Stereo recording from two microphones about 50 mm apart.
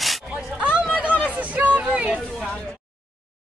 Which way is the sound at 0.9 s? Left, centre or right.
Right.